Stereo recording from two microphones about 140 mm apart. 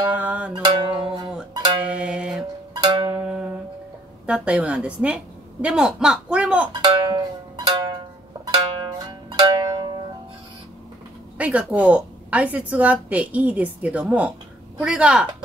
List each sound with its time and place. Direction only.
0.1 s music: 10° right (ahead or behind)
0.5 s music: 35° right (ahead or behind)
1.9 s music: 10° right (ahead or behind)
2.8 s music: 35° right (ahead or behind)
4.3 s a woman's voice: 10° right (ahead or behind)
6.7 s music: 35° right (ahead or behind)
8.5 s zither: 40° right (ahead or behind)
11.3 s a woman's voice: 10° right (ahead or behind)